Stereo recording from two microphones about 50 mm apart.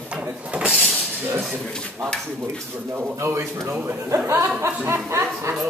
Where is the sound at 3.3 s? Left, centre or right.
Right.